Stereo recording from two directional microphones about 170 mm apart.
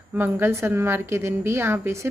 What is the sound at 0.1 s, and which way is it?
A woman's voice, 10° right (ahead or behind).